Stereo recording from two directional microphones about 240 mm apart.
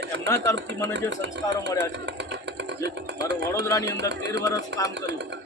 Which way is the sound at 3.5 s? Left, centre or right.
Centre.